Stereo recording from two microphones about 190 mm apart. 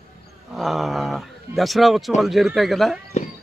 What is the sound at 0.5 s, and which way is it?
A man's voice, centre (ahead or behind).